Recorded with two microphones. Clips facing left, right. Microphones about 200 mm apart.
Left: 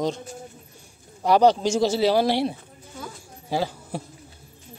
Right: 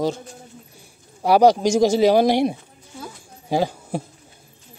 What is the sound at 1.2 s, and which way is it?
A man's voice, 10° right (ahead or behind).